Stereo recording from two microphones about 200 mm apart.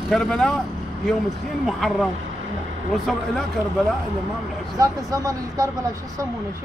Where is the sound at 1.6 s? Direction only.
Centre (ahead or behind).